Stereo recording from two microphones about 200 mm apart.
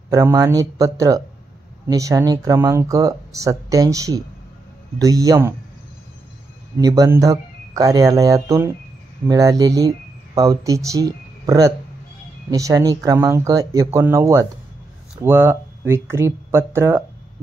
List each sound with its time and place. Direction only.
0.1 s speech: 15° right (ahead or behind)
6.8 s speech: 15° right (ahead or behind)